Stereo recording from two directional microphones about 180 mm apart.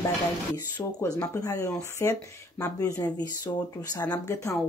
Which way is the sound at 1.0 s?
10° left (ahead or behind).